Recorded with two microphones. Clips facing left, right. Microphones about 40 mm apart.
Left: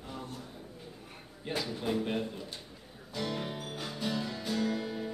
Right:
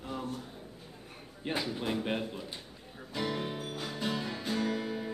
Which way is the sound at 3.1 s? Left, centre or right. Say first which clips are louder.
Right 1 dB; centre.